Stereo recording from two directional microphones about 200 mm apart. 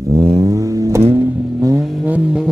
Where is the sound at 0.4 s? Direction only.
15° right (ahead or behind).